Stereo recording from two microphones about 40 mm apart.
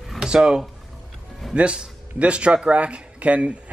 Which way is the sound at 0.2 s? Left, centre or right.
Centre.